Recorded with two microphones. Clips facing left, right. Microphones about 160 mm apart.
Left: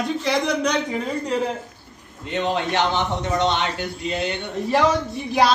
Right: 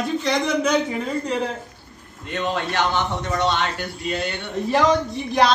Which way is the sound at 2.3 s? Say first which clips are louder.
Left 2 dB; 20° left (ahead or behind).